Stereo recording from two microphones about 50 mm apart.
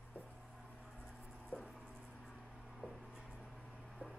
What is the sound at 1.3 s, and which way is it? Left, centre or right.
Writing, left.